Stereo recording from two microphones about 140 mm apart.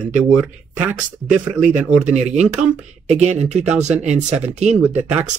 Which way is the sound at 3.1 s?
55° right (ahead or behind).